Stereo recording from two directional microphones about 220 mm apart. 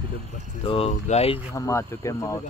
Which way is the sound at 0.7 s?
25° left (ahead or behind).